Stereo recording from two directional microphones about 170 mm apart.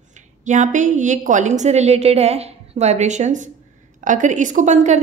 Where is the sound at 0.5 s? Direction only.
45° right (ahead or behind).